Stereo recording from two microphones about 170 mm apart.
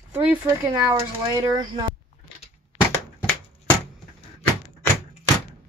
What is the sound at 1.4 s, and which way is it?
Speech, 25° right (ahead or behind).